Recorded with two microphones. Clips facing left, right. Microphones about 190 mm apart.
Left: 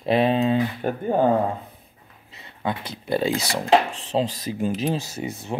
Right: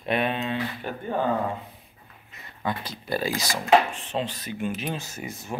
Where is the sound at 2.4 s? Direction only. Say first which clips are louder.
Left 2 dB; 20° left (ahead or behind).